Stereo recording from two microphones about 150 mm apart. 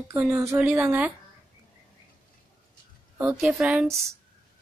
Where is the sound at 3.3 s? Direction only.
5° right (ahead or behind).